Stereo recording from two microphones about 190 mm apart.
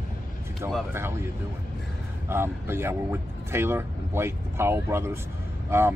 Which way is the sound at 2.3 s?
10° right (ahead or behind).